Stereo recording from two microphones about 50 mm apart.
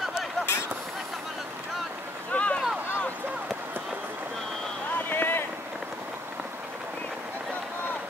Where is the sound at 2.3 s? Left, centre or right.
Left.